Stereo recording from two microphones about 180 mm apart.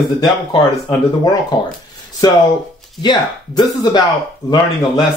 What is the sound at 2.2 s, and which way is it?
Speech, 20° left (ahead or behind).